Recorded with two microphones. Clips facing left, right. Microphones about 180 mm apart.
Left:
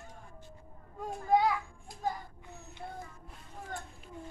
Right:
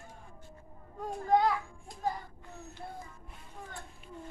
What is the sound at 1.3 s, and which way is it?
Children playing, 5° left (ahead or behind).